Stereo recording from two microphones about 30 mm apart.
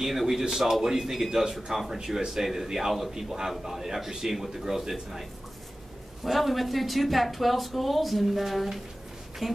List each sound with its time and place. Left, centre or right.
0.0 s a man's voice: centre
6.2 s speech: centre